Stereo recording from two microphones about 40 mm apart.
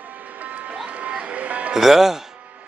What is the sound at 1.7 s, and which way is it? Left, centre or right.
Speech, centre.